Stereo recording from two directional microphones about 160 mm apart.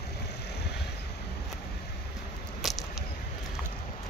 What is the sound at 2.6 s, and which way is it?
Biting, centre (ahead or behind).